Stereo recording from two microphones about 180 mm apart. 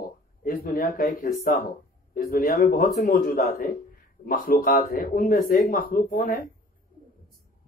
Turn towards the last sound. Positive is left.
turn(degrees=50)  # may be behind; listen again after turning